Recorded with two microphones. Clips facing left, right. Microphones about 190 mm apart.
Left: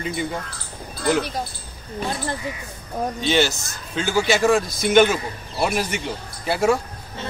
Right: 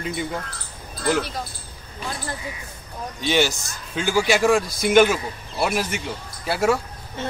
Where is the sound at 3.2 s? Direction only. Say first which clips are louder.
Even; 10° right (ahead or behind).